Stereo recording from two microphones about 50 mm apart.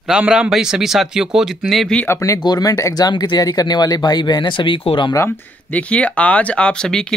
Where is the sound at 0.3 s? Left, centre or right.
Centre.